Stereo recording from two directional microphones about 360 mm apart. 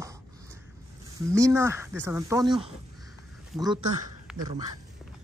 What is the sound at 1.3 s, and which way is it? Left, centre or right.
Speech, centre.